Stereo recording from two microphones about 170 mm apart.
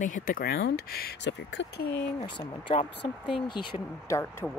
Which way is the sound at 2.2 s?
35° left (ahead or behind).